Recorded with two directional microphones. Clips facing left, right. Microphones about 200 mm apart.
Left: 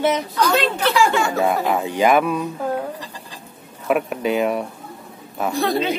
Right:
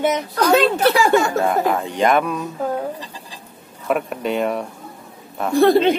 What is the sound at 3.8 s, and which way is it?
Speech, 5° left (ahead or behind).